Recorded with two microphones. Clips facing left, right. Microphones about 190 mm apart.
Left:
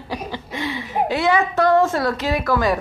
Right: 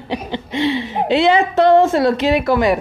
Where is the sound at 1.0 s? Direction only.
25° right (ahead or behind).